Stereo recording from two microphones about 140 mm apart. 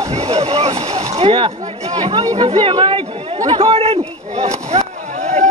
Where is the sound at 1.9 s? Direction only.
45° right (ahead or behind).